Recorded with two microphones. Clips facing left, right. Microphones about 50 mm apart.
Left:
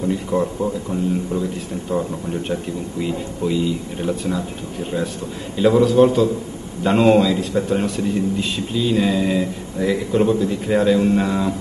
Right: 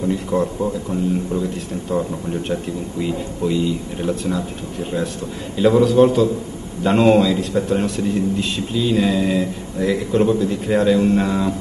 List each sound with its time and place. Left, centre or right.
0.1 s a man's voice: centre
1.9 s a man's voice: centre
5.6 s a man's voice: centre